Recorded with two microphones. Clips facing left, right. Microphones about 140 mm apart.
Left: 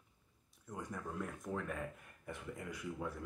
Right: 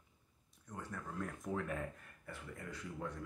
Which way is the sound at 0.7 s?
15° left (ahead or behind).